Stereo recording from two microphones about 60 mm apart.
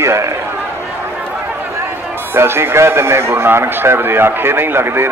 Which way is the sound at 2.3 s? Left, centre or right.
Right.